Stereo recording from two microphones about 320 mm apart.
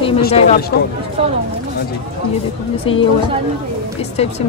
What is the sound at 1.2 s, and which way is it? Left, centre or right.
Speech, centre.